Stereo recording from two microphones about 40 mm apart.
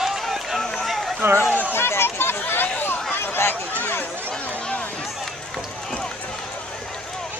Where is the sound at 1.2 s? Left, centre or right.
Right.